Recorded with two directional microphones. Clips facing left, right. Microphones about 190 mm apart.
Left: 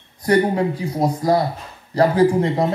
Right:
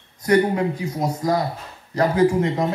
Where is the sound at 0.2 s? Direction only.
30° left (ahead or behind).